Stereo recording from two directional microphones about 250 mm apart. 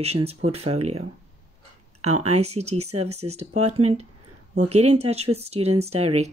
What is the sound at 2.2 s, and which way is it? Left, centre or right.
Speech, right.